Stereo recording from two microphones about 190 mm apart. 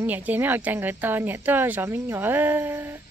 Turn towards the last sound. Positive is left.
turn(degrees=-15)  # may be behind; listen again after turning